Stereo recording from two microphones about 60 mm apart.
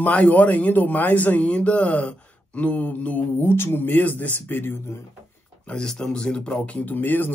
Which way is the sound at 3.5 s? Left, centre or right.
Left.